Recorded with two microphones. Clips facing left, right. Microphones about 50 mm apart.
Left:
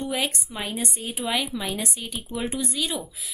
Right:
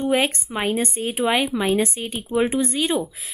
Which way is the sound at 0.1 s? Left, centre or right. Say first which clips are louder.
Right 7 dB; right.